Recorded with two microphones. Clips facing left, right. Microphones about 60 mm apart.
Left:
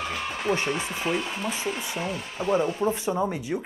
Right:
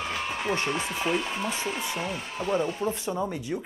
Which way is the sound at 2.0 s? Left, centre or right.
Centre.